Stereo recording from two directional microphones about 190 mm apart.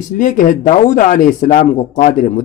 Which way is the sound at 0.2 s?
45° left (ahead or behind).